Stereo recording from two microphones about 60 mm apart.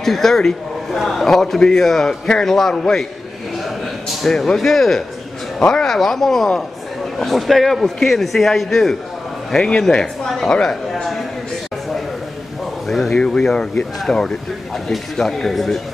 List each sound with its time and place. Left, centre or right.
0.0 s a man's voice: centre
12.8 s a man's voice: centre